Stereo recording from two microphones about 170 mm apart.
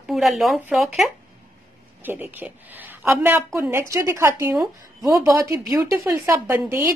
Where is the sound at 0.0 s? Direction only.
Centre (ahead or behind).